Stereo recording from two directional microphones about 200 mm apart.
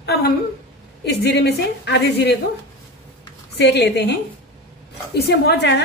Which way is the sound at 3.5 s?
60° left (ahead or behind).